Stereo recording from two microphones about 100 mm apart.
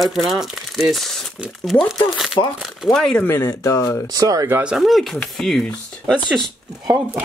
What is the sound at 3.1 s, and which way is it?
Speech, 25° left (ahead or behind).